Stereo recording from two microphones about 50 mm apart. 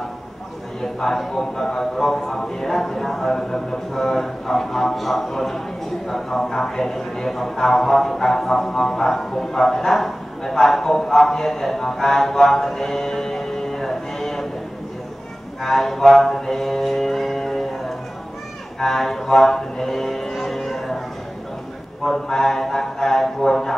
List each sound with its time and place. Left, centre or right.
0.7 s speech: centre
15.6 s a sound: centre
18.8 s music: centre
22.0 s speech: centre